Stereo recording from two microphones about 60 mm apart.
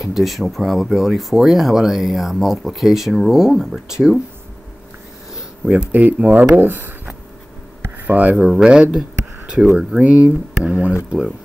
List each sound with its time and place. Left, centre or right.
0.0 s speech: centre
5.7 s speech: right
8.0 s speech: right
8.5 s speech: centre
9.9 s speech: right